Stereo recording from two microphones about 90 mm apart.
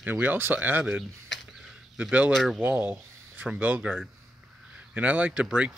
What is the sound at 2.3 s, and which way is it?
Speech, centre (ahead or behind).